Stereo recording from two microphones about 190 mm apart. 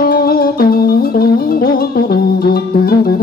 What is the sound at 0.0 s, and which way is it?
Music, 50° left (ahead or behind).